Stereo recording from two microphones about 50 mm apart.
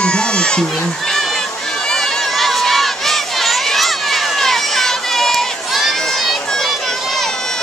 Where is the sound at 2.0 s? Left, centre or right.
Centre.